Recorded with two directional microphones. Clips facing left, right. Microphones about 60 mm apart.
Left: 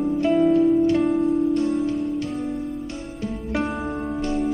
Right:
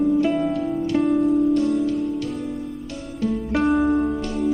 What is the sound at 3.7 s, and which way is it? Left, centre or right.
Music, centre.